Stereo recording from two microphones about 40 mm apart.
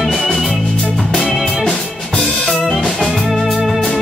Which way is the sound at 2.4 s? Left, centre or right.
Centre.